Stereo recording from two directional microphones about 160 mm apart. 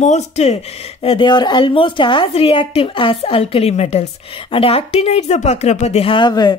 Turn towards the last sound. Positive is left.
turn(degrees=25)  # may be behind; listen again after turning